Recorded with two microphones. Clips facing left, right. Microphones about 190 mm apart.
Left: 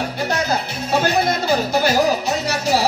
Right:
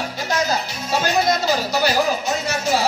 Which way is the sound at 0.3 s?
55° left (ahead or behind).